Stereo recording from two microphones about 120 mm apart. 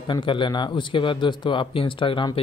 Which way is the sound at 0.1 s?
45° left (ahead or behind).